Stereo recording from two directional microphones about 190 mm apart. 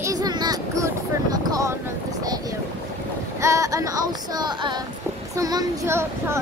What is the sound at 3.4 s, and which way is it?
Child singing, 15° right (ahead or behind).